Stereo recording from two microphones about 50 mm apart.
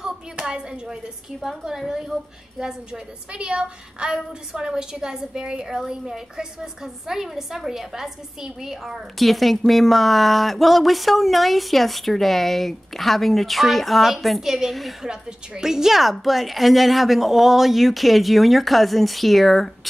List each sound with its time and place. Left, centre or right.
0.0 s a sound: centre
1.6 s a woman's voice: centre
15.0 s speech: centre